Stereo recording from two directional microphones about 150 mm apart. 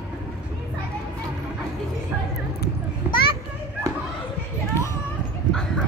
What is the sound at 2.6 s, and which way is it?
Children playing, 90° left.